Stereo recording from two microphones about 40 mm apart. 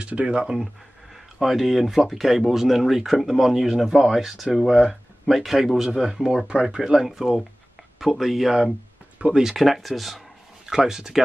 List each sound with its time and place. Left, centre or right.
0.3 s speech: right
1.1 s speech: centre
6.4 s speech: right
6.8 s speech: centre
9.7 s speech: centre
10.7 s speech: centre